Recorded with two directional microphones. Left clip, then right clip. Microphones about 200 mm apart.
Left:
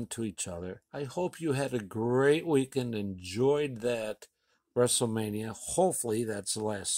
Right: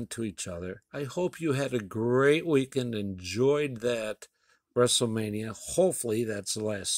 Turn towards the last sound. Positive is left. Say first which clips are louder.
# right 2 dB
turn(degrees=-15)  # may be behind; listen again after turning